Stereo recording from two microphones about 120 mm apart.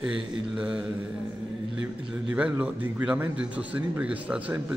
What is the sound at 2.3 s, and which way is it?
A man's voice, 10° right (ahead or behind).